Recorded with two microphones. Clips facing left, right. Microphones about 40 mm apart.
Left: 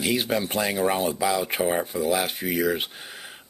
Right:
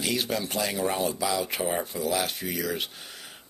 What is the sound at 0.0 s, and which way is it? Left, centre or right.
Speech, centre.